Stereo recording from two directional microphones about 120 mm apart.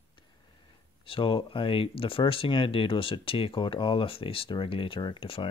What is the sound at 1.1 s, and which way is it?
Speech, 45° left (ahead or behind).